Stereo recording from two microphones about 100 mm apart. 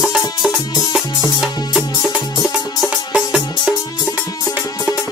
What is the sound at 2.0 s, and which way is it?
Music, 5° right (ahead or behind).